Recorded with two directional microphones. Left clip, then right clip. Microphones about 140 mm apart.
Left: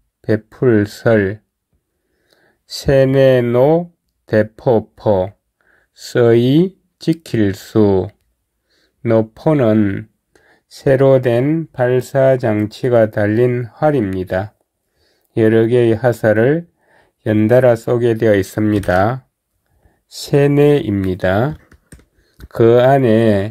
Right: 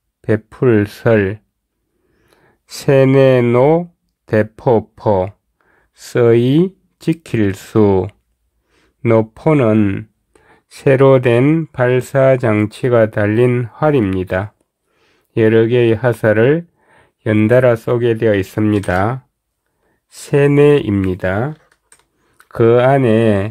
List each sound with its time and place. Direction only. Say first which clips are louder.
0.2 s speech: right 1 dB; 20° right (ahead or behind)
2.4 s speech: right 2 dB; 15° right (ahead or behind)
9.7 s speech: even; 25° right (ahead or behind); by 21.5 s centre (ahead or behind)
22.4 s speech: left 1 dB; 10° right (ahead or behind)